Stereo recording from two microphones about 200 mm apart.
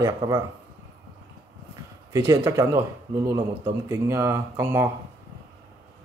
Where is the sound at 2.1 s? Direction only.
10° right (ahead or behind).